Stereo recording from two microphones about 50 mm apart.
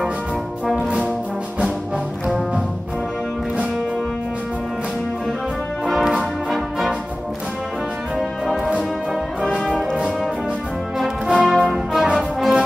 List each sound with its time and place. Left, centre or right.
0.7 s music: centre
2.2 s music: centre
8.2 s music: centre
11.2 s brass instrument: centre
11.7 s music: centre